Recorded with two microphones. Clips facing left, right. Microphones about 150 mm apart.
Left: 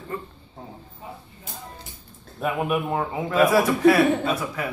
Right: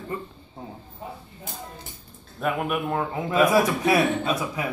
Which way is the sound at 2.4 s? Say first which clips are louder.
Left 1 dB; 5° left (ahead or behind).